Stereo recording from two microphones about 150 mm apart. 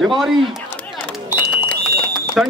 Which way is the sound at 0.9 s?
Centre (ahead or behind).